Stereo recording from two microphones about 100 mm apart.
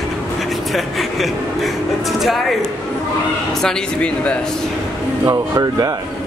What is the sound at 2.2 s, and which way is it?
Music, centre (ahead or behind).